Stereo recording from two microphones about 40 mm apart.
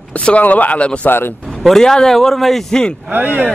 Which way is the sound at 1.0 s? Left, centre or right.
Left.